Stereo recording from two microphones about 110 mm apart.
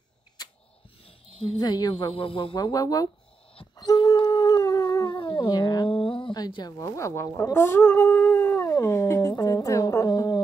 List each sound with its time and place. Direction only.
1.6 s speech: 40° left (ahead or behind)
3.7 s a sound: 35° left (ahead or behind)
5.1 s speech: 45° left (ahead or behind); by 10.0 s 25° left (ahead or behind)
10.0 s music: 40° left (ahead or behind)